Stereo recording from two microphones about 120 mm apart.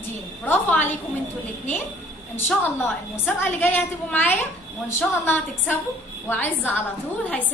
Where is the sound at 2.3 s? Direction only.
20° left (ahead or behind).